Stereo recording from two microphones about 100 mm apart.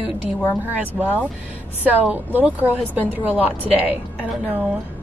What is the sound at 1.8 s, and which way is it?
A woman's voice, 15° right (ahead or behind).